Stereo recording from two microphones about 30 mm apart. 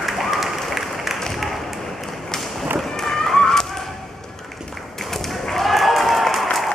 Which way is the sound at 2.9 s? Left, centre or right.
Centre.